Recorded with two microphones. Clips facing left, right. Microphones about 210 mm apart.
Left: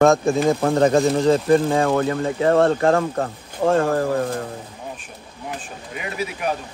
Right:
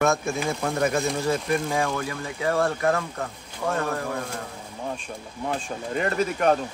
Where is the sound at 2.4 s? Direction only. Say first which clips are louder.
Left 6 dB; 55° left (ahead or behind).